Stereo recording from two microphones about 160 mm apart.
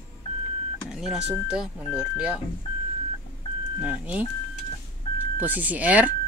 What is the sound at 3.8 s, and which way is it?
Speech, 10° right (ahead or behind).